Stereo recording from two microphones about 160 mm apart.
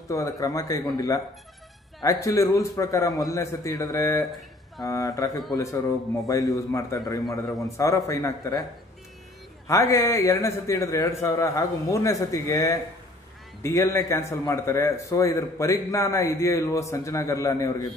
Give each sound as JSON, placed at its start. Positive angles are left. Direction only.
{"t": 0.1, "sound": "a man's voice", "side_deg": 20}
{"t": 7.4, "sound": "a man's voice", "side_deg": 0}
{"t": 7.7, "sound": "a man's voice", "side_deg": 20}
{"t": 9.7, "sound": "a man's voice", "side_deg": 20}